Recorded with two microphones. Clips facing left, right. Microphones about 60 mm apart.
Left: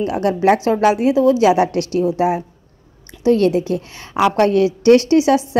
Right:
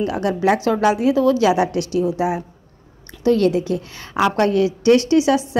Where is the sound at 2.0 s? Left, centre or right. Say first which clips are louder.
Left 3 dB; left.